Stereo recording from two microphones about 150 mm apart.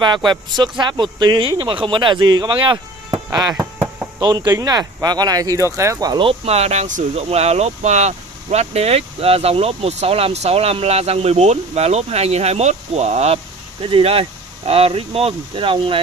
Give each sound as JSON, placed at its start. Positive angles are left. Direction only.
{"t": 0.0, "sound": "speech", "side_deg": -30}
{"t": 3.5, "sound": "chop", "side_deg": -15}
{"t": 4.2, "sound": "speech", "side_deg": -25}
{"t": 6.2, "sound": "speech", "side_deg": -45}